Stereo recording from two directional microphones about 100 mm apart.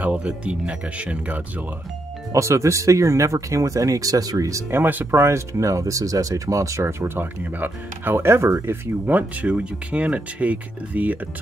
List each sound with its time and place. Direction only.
0.0 s speech: 15° right (ahead or behind)
2.3 s speech: 30° right (ahead or behind); by 11.1 s 15° right (ahead or behind)